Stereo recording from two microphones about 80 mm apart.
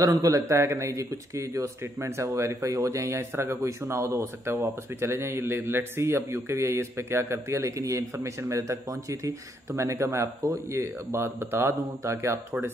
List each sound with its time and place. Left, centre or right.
0.0 s a man's voice: right